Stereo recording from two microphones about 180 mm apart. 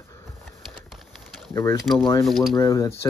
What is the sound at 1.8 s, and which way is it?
Speech, centre (ahead or behind).